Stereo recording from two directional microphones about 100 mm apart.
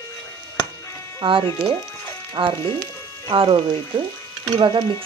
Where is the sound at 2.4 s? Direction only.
45° right (ahead or behind).